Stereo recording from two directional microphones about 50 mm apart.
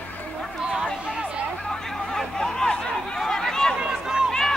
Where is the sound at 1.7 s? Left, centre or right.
Centre.